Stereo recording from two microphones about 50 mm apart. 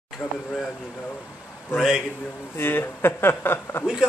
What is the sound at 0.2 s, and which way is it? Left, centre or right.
Speech, left.